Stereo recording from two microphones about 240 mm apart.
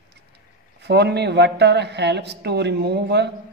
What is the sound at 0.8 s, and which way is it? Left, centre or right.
Speech, right.